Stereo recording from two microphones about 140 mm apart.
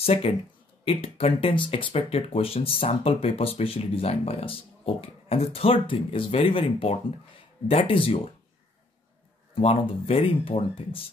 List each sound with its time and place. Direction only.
0.0 s speech: 45° left (ahead or behind)
9.6 s speech: 40° left (ahead or behind)